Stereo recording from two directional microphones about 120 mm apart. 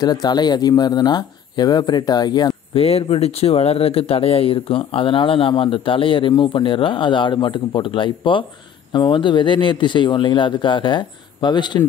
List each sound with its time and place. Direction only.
0.0 s speech: 35° left (ahead or behind)
2.7 s speech: 55° left (ahead or behind)